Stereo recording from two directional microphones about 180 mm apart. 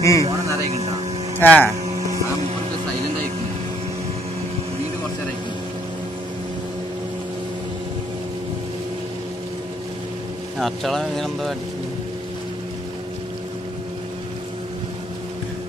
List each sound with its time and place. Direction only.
0.0 s speech: 15° left (ahead or behind)
0.3 s a sound: 15° right (ahead or behind)
1.4 s speech: 10° left (ahead or behind)
10.6 s speech: centre (ahead or behind)